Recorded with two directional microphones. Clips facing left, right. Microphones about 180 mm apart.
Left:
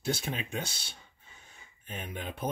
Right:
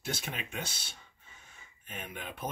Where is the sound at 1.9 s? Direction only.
30° left (ahead or behind).